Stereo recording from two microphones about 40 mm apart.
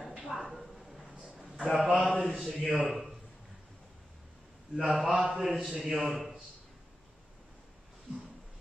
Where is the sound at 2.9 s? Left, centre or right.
Centre.